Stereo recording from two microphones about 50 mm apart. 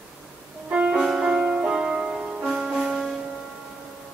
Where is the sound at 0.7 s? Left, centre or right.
Centre.